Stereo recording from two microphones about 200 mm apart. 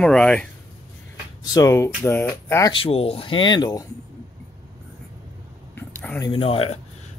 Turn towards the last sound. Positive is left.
turn(degrees=30)  # may be behind; listen again after turning